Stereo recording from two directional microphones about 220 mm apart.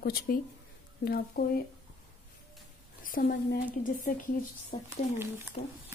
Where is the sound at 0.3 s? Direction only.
45° left (ahead or behind).